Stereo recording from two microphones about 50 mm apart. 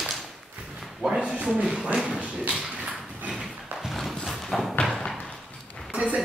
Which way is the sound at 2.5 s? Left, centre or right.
Centre.